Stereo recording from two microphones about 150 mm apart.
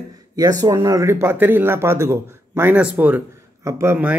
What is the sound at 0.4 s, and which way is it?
Speech, 25° right (ahead or behind).